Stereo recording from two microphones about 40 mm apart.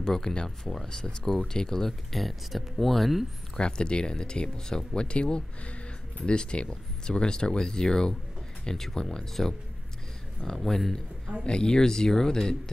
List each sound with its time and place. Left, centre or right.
0.0 s speech: centre
3.5 s speech: left; by 11.0 s centre
11.4 s speech: left